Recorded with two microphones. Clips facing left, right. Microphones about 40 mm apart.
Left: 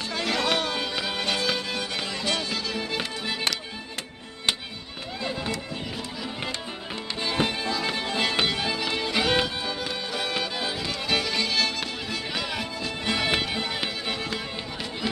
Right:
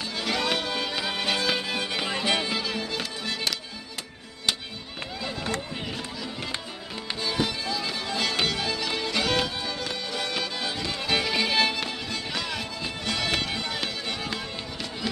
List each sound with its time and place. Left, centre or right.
0.1 s music: centre
2.0 s music: right
7.2 s music: left; by 10.9 s centre
11.1 s music: centre
12.1 s music: centre